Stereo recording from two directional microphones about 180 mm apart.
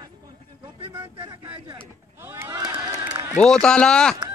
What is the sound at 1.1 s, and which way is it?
Speech, 30° right (ahead or behind).